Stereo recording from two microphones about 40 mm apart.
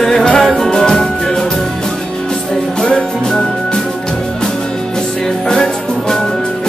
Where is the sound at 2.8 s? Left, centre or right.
Left.